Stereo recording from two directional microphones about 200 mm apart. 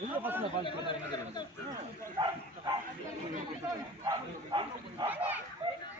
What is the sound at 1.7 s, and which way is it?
Speech, 20° right (ahead or behind).